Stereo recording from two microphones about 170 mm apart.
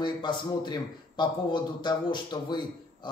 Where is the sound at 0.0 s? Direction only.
25° left (ahead or behind).